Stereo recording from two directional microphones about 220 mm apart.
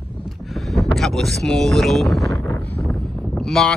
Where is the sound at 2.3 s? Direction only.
10° left (ahead or behind).